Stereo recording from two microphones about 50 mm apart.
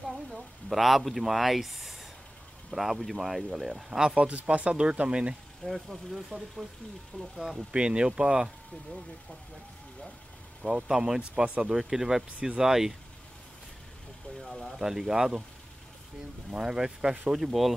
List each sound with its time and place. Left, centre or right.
0.0 s speech: centre
4.3 s speech: right
5.7 s speech: centre
7.7 s speech: centre
10.9 s speech: centre
11.7 s speech: centre
14.4 s speech: centre
14.8 s speech: centre
16.4 s speech: centre